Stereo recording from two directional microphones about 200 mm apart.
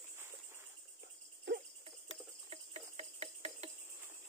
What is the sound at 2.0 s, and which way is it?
Cricket, 30° right (ahead or behind).